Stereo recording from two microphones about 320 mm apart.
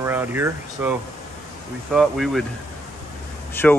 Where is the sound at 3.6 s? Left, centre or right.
Centre.